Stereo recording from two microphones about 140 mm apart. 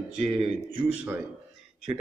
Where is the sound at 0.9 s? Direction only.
15° right (ahead or behind).